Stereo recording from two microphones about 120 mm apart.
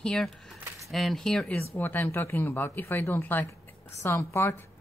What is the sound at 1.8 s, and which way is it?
Speech, 15° left (ahead or behind).